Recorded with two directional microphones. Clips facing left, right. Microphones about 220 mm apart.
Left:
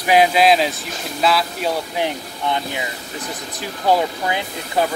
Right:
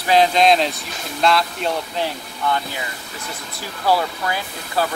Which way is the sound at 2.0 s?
20° left (ahead or behind).